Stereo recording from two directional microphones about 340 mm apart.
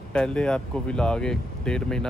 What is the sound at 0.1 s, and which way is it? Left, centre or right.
Speech, centre.